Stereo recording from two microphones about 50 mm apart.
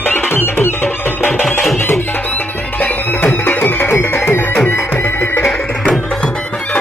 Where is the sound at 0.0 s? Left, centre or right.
Left.